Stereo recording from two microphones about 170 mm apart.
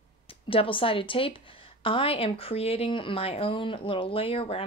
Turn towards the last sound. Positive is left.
turn(degrees=35)  # may be behind; listen again after turning